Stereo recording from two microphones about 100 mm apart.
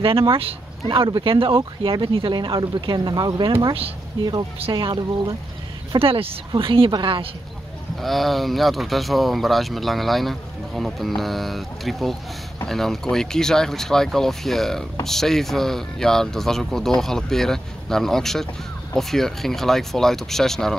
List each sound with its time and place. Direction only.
0.0 s speech: 65° right (ahead or behind); by 3.5 s 45° right (ahead or behind)
4.6 s speech: 65° right (ahead or behind)
5.9 s speech: 70° right (ahead or behind)
6.9 s a woman's voice: 50° right (ahead or behind)
8.0 s speech: centre (ahead or behind)